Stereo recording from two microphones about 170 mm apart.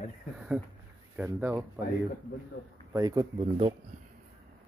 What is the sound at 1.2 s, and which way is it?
Speech, 10° right (ahead or behind).